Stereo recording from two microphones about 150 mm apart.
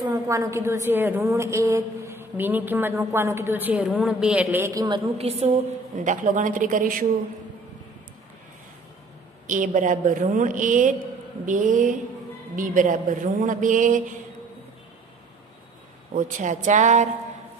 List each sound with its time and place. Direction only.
0.1 s a woman's voice: 20° right (ahead or behind)
4.8 s a woman's voice: 35° right (ahead or behind)
5.9 s a woman's voice: 60° right (ahead or behind)
9.5 s a woman's voice: 60° right (ahead or behind)
16.2 s a woman's voice: 60° right (ahead or behind)